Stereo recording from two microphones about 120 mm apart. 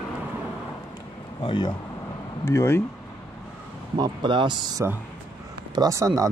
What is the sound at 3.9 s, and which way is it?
Speech, 35° right (ahead or behind).